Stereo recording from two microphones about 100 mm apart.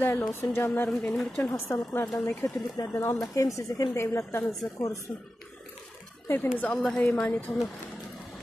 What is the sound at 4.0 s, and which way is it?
Speech, 25° left (ahead or behind).